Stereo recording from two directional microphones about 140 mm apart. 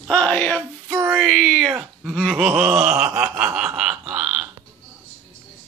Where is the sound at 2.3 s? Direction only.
5° right (ahead or behind).